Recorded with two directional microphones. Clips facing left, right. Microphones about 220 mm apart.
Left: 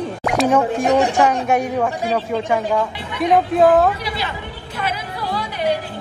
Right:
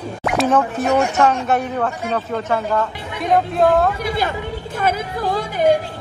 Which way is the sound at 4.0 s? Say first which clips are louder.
Right 5 dB; 50° right (ahead or behind).